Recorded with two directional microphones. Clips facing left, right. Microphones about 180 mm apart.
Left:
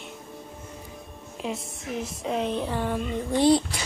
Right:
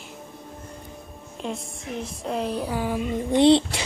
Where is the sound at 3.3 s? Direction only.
25° right (ahead or behind).